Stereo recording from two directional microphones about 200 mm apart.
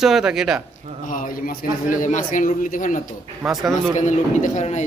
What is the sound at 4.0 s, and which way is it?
Speech, 35° left (ahead or behind).